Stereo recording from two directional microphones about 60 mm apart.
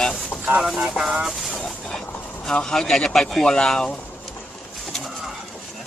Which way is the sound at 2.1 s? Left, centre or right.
Left.